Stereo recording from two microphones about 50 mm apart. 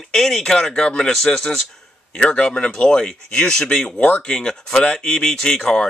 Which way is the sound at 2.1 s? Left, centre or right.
Left.